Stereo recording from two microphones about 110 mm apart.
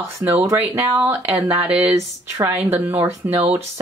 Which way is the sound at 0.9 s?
25° right (ahead or behind).